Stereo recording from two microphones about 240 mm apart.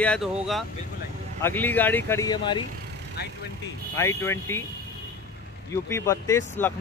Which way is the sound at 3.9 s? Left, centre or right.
Centre.